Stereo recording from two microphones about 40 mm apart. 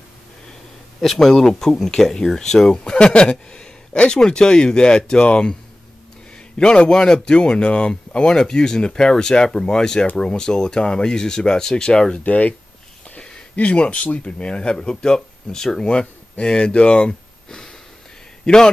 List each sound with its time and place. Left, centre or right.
1.0 s speech: centre; by 5.6 s left
6.6 s speech: left
12.2 s speech: left
13.2 s a sound: left
14.0 s a man's voice: left